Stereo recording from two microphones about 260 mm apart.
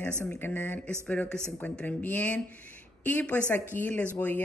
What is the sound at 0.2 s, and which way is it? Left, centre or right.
Speech, centre.